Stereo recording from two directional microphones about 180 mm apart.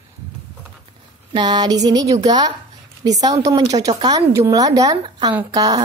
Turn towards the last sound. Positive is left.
turn(degrees=-20)  # may be behind; listen again after turning